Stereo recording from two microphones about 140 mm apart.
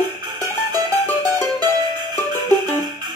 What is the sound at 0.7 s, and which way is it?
Music, 25° right (ahead or behind).